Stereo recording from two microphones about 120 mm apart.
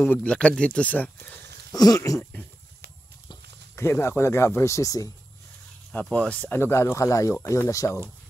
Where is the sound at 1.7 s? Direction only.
30° left (ahead or behind).